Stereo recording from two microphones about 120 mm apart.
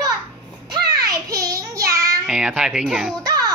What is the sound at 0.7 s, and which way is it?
Child singing, 35° right (ahead or behind).